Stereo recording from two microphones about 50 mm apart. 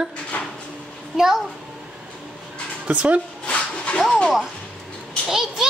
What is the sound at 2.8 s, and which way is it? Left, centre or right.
Speech, right.